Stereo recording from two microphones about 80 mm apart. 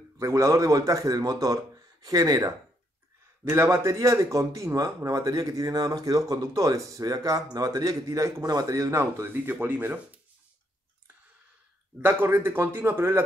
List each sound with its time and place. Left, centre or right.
0.2 s a man's voice: right
3.4 s a man's voice: right
9.3 s speech: right
12.0 s speech: right